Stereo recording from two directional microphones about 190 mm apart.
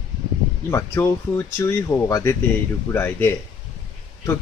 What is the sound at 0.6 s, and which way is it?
Speech, 15° left (ahead or behind).